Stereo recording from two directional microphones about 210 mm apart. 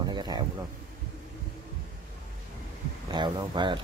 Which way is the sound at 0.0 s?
20° right (ahead or behind).